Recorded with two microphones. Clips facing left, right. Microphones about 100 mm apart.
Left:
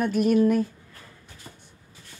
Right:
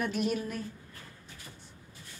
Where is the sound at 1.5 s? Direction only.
40° left (ahead or behind).